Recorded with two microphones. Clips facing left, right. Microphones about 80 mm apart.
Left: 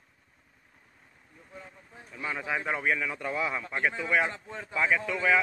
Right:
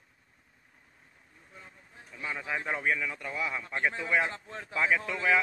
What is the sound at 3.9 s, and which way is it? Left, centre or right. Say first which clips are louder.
Speech: left 2 dB; centre.